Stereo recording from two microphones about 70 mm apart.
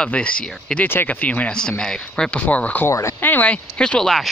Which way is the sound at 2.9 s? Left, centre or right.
Left.